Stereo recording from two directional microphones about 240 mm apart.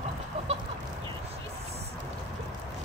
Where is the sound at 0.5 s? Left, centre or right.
Right.